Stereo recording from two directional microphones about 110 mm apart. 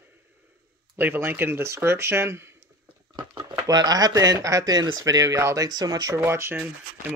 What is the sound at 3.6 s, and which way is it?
Speech, 35° right (ahead or behind).